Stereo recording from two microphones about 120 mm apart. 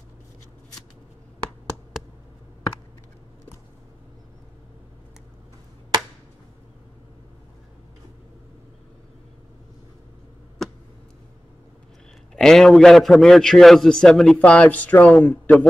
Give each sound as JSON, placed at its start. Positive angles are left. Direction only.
{"t": 12.4, "sound": "a man's voice", "side_deg": 5}